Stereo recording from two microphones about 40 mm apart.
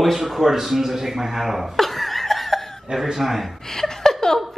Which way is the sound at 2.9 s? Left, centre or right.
Centre.